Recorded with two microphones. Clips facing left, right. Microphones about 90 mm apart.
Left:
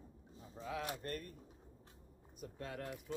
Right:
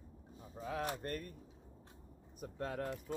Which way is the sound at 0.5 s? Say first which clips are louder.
Right 3 dB; 40° right (ahead or behind).